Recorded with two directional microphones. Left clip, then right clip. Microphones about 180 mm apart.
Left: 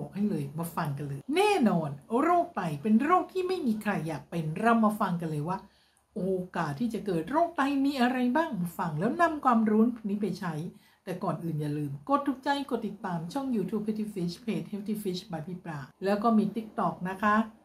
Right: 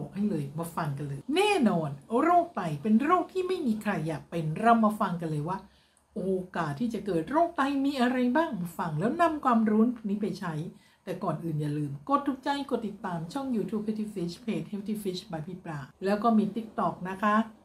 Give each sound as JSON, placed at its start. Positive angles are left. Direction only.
{"t": 0.1, "sound": "speech", "side_deg": 5}